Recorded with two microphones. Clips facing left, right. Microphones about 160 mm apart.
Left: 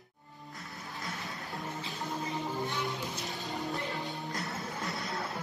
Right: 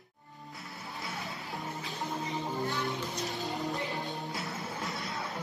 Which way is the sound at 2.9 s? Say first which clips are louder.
Right 2 dB; centre (ahead or behind).